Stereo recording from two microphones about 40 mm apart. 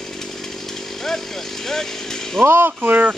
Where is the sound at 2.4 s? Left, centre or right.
Right.